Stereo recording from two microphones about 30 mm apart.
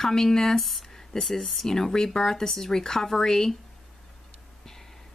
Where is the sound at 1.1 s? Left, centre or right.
Left.